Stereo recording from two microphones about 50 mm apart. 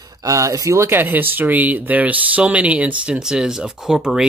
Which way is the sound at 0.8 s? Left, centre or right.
Right.